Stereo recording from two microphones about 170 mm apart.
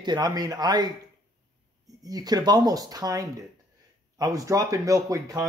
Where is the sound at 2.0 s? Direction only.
20° right (ahead or behind).